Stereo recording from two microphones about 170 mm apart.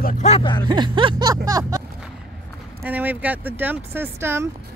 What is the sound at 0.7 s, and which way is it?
Music, 30° right (ahead or behind).